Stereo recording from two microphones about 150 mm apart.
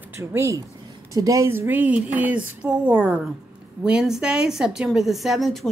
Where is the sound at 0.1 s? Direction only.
15° right (ahead or behind).